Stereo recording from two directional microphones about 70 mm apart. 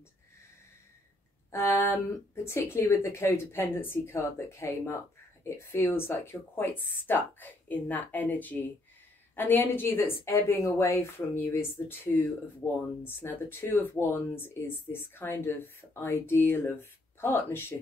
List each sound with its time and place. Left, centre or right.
1.5 s a sound: left
2.3 s speech: left
11.5 s speech: left